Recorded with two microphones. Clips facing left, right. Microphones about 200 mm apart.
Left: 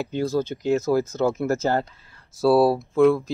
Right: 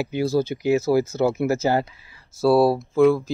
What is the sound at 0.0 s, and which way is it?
Speech, 10° right (ahead or behind).